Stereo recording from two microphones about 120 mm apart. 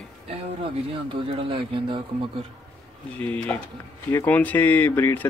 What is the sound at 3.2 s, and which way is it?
Speech, 15° left (ahead or behind).